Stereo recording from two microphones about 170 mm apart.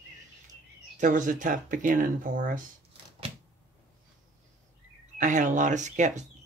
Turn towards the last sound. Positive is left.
turn(degrees=-45)  # may be behind; listen again after turning